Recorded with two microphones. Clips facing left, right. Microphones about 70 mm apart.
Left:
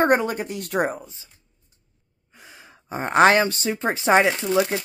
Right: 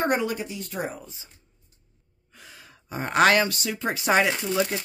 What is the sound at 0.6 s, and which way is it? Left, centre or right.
Speech, left.